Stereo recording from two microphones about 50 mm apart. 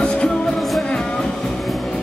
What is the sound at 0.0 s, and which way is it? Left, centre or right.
Music, left.